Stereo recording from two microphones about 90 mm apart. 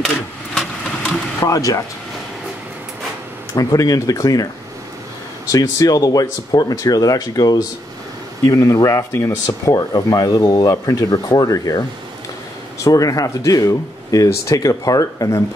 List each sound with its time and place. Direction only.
0.0 s vehicle: 5° left (ahead or behind)
1.4 s speech: 40° left (ahead or behind)
3.5 s speech: 40° left (ahead or behind)
5.5 s speech: 40° left (ahead or behind)
12.8 s speech: 40° left (ahead or behind)